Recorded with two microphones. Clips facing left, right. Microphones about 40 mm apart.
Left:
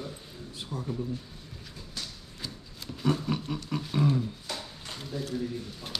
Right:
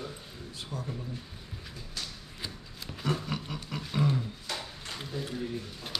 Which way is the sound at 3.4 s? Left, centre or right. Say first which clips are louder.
Left 4 dB; centre.